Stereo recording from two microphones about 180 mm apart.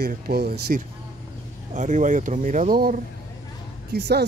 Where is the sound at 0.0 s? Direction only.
60° right (ahead or behind).